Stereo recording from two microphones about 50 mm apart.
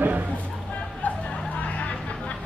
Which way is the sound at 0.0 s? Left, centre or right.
Right.